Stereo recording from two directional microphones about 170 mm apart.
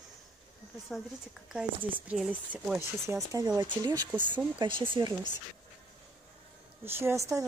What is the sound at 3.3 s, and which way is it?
Speech, 25° right (ahead or behind).